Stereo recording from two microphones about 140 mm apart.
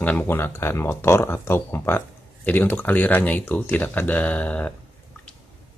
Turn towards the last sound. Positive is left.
turn(degrees=10)  # may be behind; listen again after turning